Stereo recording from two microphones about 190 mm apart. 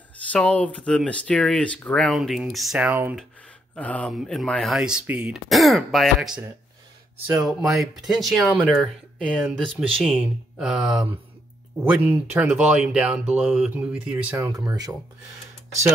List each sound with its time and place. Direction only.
0.3 s speech: 5° left (ahead or behind); by 3.2 s 10° right (ahead or behind)
3.7 s speech: 5° left (ahead or behind)
7.4 s speech: centre (ahead or behind); by 15.0 s 20° right (ahead or behind)